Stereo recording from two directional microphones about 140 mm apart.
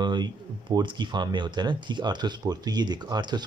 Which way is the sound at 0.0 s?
30° right (ahead or behind).